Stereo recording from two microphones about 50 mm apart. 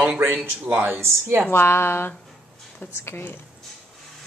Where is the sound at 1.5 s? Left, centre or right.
Left.